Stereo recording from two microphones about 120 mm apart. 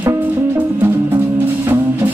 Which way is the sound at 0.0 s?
20° right (ahead or behind).